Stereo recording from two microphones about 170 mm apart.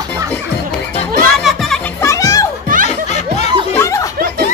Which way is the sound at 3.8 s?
20° left (ahead or behind).